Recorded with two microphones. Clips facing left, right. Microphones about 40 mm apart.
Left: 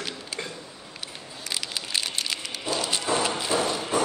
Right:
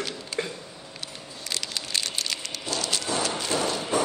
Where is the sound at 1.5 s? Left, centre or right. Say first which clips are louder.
Even; centre.